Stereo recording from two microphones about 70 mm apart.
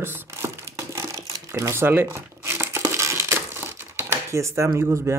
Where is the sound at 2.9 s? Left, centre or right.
Right.